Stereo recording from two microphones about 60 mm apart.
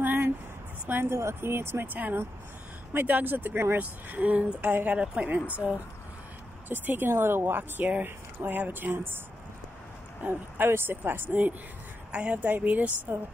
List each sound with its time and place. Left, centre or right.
0.0 s a sound: right
0.8 s a woman's voice: right
1.1 s speech: right
2.0 s a woman's voice: right
6.7 s a woman's voice: right
10.2 s speech: right
10.7 s a woman's voice: right
12.1 s speech: centre